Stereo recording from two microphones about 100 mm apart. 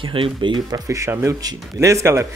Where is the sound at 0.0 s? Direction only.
60° right (ahead or behind).